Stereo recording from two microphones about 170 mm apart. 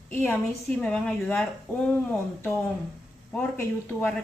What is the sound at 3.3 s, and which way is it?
Speech, 10° left (ahead or behind).